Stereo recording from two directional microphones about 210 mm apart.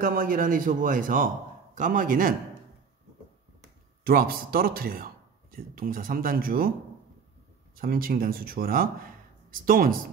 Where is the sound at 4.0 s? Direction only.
45° right (ahead or behind).